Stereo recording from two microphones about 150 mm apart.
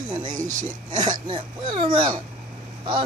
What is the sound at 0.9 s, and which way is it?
Speech, 30° right (ahead or behind).